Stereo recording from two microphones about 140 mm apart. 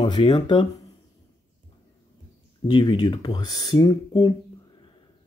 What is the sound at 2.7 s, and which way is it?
Speech, 30° left (ahead or behind).